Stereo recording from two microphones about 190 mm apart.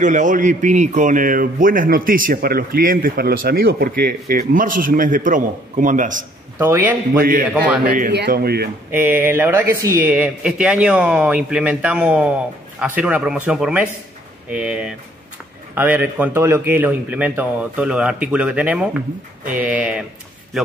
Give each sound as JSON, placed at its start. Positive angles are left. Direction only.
{"t": 0.0, "sound": "a man's voice", "side_deg": -40}
{"t": 6.6, "sound": "speech", "side_deg": -10}
{"t": 7.2, "sound": "a man's voice", "side_deg": -50}
{"t": 8.9, "sound": "speech", "side_deg": -10}